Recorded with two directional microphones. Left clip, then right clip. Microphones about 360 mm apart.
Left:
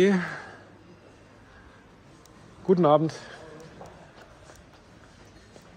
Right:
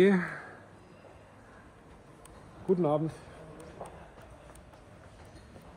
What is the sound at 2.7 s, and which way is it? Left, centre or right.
Speech, left.